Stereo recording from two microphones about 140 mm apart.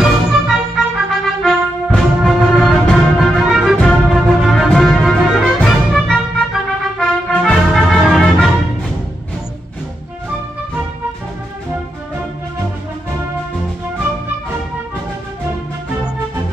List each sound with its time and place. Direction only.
0.0 s music: 5° right (ahead or behind)